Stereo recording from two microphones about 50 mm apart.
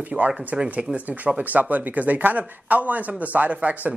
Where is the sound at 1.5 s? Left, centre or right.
Right.